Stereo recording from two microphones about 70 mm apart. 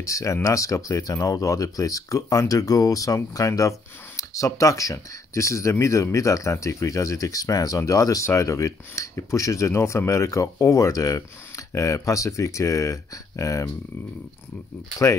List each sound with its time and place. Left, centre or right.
0.0 s speech: left